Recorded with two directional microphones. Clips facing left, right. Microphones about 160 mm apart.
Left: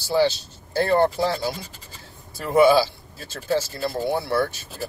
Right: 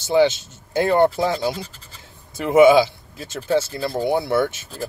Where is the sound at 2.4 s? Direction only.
20° right (ahead or behind).